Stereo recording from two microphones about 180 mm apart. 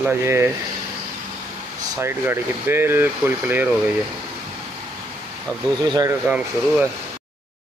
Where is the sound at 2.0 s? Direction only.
10° right (ahead or behind).